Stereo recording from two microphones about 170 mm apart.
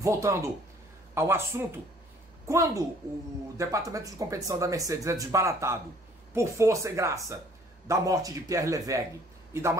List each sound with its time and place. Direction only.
0.0 s a man's voice: 20° right (ahead or behind)